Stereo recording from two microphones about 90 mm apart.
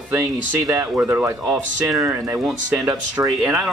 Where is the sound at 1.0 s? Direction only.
25° right (ahead or behind).